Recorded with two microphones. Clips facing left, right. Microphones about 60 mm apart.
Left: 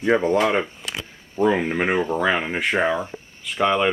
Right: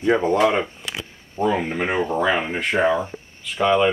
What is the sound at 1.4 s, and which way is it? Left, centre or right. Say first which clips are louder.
Speech: left 2 dB; centre.